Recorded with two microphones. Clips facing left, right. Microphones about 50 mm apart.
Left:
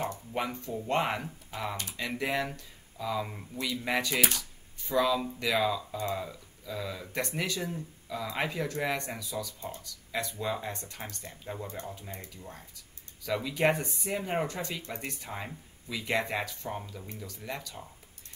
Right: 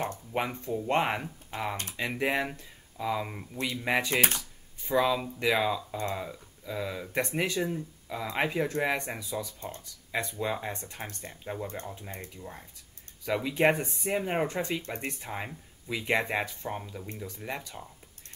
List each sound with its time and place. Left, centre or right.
0.3 s speech: right
12.1 s speech: right
13.2 s speech: right
15.2 s speech: centre